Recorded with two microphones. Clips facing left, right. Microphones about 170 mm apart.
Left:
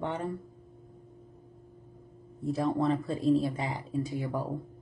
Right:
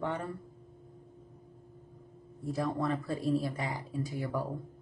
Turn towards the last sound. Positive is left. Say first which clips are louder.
# left 3 dB
turn(degrees=20)  # may be behind; listen again after turning